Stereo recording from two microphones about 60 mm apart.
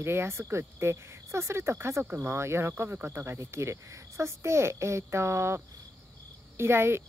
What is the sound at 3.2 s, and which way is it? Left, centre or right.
Speech, right.